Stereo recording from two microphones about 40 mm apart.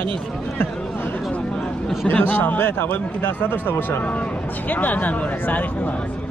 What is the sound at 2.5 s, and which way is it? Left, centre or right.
A man's voice, left.